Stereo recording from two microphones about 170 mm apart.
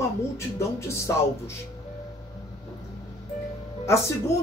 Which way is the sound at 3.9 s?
15° left (ahead or behind).